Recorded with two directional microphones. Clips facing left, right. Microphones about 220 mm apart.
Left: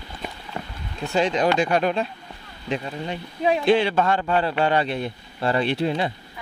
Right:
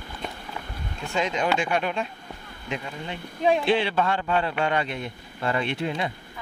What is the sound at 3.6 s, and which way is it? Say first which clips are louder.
Speech: left 4 dB; 45° left (ahead or behind).